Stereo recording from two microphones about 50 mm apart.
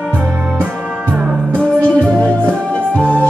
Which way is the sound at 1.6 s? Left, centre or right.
Left.